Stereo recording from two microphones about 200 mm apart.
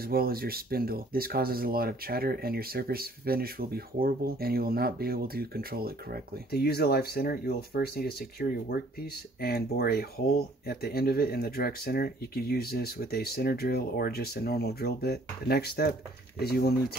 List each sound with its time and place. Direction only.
0.0 s speech: 50° right (ahead or behind)
6.5 s speech: 50° left (ahead or behind)